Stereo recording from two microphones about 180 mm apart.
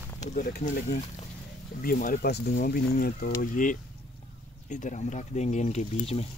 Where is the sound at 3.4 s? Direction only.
45° left (ahead or behind).